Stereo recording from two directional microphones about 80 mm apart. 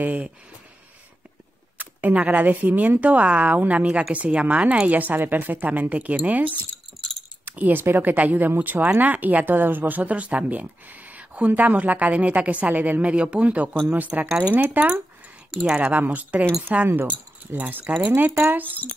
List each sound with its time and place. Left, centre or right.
0.0 s speech: centre
1.8 s speech: centre
7.0 s a sound: centre
7.4 s speech: right